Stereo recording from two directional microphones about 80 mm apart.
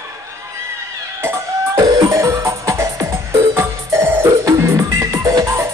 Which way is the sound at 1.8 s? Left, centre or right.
Right.